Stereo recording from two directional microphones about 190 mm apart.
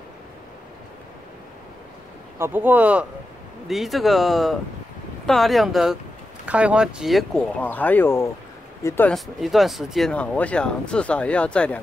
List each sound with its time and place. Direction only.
2.3 s speech: 10° right (ahead or behind); by 9.1 s 10° left (ahead or behind)
9.1 s speech: centre (ahead or behind)